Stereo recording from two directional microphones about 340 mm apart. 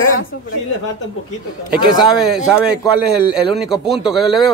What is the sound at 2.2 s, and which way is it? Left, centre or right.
A man's voice, centre.